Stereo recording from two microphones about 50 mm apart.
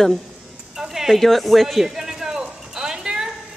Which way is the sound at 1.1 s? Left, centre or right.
Centre.